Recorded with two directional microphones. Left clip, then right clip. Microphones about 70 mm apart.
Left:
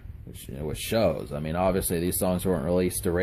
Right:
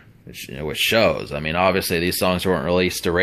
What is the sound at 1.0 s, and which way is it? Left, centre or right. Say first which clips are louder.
Speech: right 7 dB; left.